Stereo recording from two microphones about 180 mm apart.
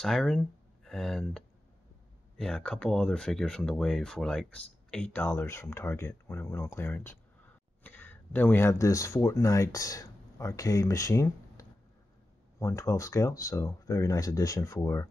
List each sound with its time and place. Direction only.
0.0 s speech: centre (ahead or behind)